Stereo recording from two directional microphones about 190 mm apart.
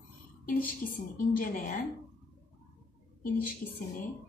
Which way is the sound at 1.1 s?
50° left (ahead or behind).